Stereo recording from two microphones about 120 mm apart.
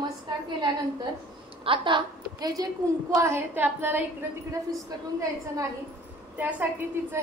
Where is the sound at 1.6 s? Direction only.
45° right (ahead or behind); by 4.0 s 15° right (ahead or behind).